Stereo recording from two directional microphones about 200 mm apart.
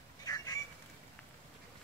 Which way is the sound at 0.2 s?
20° left (ahead or behind).